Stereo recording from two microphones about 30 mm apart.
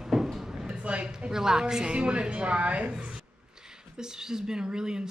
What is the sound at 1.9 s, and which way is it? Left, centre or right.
Speech, right.